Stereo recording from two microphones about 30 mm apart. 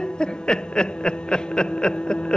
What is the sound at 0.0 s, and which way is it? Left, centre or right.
Snicker, left.